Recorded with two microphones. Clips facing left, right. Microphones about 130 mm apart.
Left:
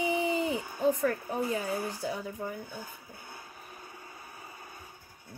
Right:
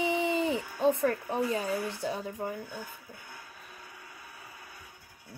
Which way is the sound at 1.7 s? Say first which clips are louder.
Right 1 dB; 25° left (ahead or behind).